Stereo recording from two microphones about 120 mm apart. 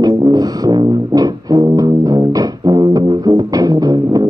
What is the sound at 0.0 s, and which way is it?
Music, 30° right (ahead or behind).